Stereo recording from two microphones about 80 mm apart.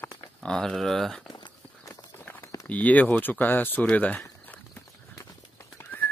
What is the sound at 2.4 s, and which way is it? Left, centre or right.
Clip-clop, left.